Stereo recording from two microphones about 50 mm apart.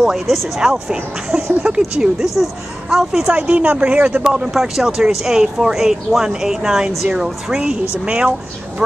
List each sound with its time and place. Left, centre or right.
0.0 s speech: centre
3.3 s speech: right